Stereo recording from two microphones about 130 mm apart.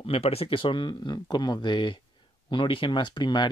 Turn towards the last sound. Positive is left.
turn(degrees=35)  # may be behind; listen again after turning